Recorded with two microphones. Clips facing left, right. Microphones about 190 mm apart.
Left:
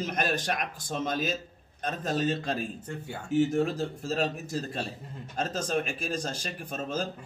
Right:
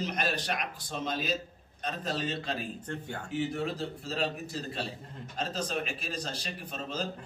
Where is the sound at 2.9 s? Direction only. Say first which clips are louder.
Even; 10° left (ahead or behind).